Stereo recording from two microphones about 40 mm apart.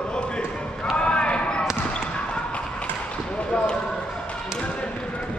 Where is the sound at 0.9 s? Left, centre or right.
Left.